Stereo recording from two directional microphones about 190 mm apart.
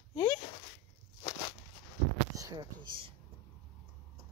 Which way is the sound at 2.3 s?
20° right (ahead or behind).